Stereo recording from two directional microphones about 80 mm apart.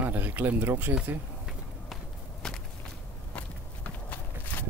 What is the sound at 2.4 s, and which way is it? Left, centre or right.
Walk, centre.